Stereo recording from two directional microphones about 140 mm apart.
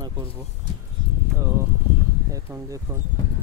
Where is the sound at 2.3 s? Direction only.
25° right (ahead or behind).